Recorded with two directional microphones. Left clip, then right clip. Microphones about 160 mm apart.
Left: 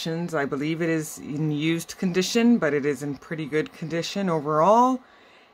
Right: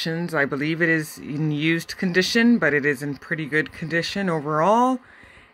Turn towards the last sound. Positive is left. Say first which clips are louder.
# even
turn(degrees=-10)  # may be behind; listen again after turning